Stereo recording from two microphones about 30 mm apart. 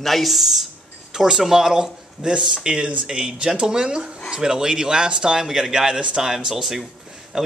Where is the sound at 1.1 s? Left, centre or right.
Right.